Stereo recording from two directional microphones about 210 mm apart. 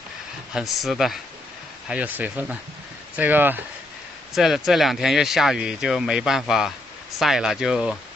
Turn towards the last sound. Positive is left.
turn(degrees=-5)  # may be behind; listen again after turning